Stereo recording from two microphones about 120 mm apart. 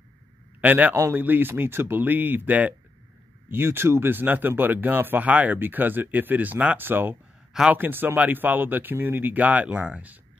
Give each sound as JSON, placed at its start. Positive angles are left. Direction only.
{"t": 0.6, "sound": "speech", "side_deg": -15}
{"t": 0.9, "sound": "speech", "side_deg": -25}